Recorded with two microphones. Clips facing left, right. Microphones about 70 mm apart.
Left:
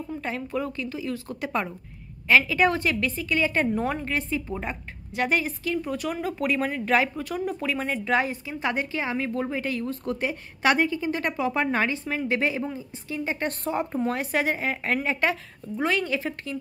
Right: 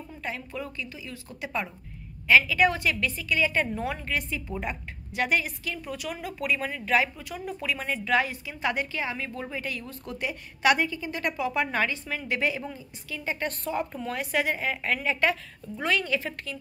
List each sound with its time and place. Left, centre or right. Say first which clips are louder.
0.2 s a woman's voice: left 4 dB; left